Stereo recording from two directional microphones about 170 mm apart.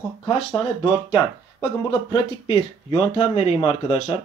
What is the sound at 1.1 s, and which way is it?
Speech, 25° left (ahead or behind).